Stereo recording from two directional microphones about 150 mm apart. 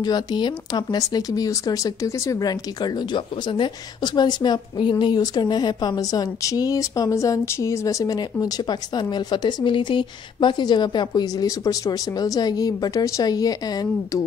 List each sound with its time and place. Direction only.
0.0 s speech: 30° left (ahead or behind)